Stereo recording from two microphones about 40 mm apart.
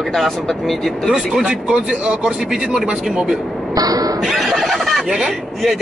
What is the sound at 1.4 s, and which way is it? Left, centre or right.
Speech, right.